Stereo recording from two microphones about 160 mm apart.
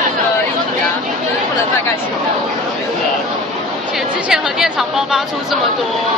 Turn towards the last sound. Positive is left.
turn(degrees=0)  # may be behind; listen again after turning